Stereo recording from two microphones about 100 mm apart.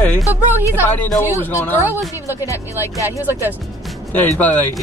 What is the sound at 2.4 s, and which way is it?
Speech, 30° left (ahead or behind).